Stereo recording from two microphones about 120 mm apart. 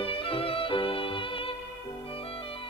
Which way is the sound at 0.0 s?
50° left (ahead or behind).